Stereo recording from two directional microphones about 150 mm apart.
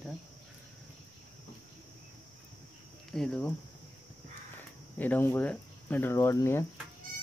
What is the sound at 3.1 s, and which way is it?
Speech, 5° left (ahead or behind).